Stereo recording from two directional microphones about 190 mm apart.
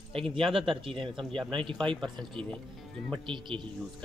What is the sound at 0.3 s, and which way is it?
Speech, 30° right (ahead or behind).